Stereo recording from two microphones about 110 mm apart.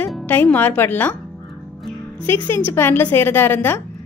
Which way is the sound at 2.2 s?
15° left (ahead or behind).